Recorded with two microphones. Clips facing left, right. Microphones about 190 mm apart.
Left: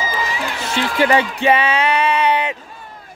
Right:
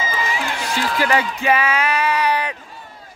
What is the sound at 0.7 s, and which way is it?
Speech, 25° left (ahead or behind).